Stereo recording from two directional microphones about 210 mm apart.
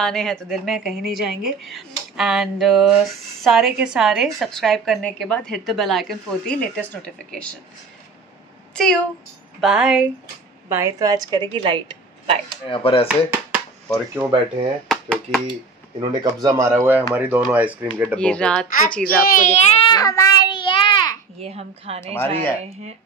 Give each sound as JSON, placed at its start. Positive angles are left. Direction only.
{"t": 0.0, "sound": "a woman's voice", "side_deg": 5}
{"t": 9.6, "sound": "a woman's voice", "side_deg": 0}
{"t": 10.7, "sound": "a woman's voice", "side_deg": -15}
{"t": 12.6, "sound": "chopping", "side_deg": 25}
{"t": 13.1, "sound": "speech", "side_deg": -10}
{"t": 14.9, "sound": "speech", "side_deg": 0}
{"t": 16.0, "sound": "speech", "side_deg": -20}
{"t": 18.1, "sound": "a woman's voice", "side_deg": 5}
{"t": 19.0, "sound": "a child's voice", "side_deg": 40}
{"t": 21.4, "sound": "a woman's voice", "side_deg": -30}
{"t": 22.0, "sound": "speech", "side_deg": 10}